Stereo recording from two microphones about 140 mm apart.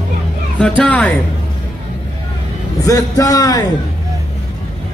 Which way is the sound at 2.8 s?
25° left (ahead or behind).